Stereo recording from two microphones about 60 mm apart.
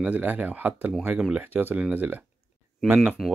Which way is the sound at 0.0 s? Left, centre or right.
Right.